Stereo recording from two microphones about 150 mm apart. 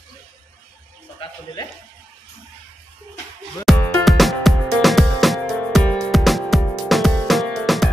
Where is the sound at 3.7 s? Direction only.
Centre (ahead or behind).